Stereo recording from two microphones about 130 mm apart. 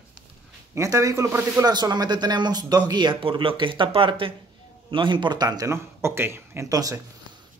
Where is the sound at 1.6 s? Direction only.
30° right (ahead or behind).